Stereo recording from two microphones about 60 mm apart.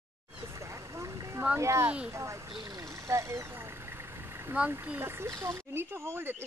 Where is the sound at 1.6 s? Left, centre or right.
Right.